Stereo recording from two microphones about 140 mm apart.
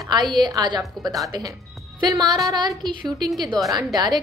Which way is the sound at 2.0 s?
30° right (ahead or behind).